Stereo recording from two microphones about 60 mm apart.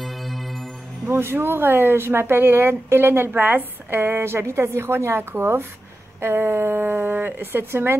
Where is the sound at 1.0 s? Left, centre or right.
Right.